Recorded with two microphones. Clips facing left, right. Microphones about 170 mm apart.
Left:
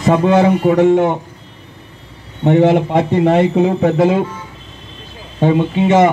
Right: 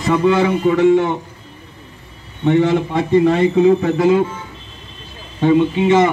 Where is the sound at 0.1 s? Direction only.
45° left (ahead or behind).